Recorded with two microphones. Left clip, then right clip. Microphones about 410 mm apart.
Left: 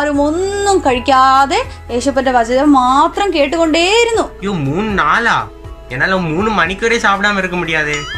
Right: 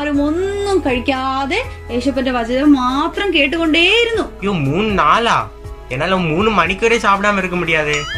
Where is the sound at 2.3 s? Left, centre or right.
Left.